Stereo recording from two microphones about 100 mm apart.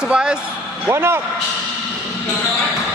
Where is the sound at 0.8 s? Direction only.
25° right (ahead or behind).